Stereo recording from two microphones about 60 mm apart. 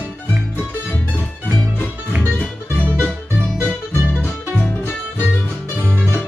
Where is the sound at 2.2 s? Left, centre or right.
Left.